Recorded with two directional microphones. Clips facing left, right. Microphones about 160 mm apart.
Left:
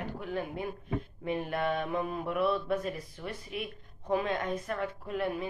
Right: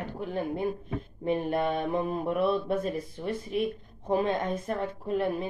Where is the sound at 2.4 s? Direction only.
25° right (ahead or behind).